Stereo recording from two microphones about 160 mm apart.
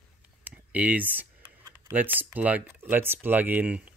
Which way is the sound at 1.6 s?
20° right (ahead or behind).